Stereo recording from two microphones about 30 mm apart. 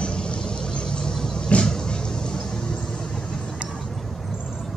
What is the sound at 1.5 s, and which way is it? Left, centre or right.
Vehicle, left.